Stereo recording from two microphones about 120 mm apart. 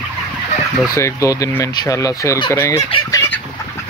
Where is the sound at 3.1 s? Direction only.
20° left (ahead or behind).